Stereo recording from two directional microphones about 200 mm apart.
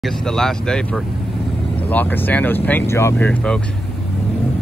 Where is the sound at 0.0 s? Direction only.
5° left (ahead or behind).